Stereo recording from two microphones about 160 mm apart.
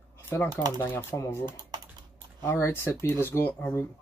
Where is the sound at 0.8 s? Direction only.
15° left (ahead or behind).